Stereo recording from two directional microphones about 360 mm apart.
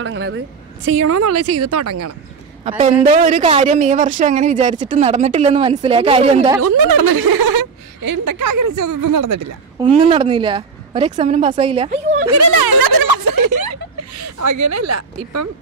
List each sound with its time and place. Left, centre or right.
0.0 s a woman's voice: right
2.8 s speech: centre
6.8 s speech: right
9.8 s a woman's voice: centre
12.5 s a sound: right
14.2 s speech: right